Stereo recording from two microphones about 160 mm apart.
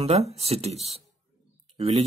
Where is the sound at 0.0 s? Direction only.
40° right (ahead or behind).